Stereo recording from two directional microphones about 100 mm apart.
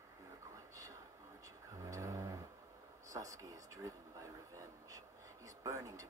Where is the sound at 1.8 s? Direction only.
35° right (ahead or behind).